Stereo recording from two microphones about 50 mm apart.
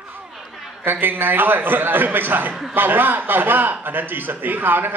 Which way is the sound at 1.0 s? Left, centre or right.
Right.